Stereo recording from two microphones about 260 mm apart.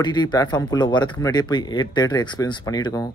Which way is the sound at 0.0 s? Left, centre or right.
Centre.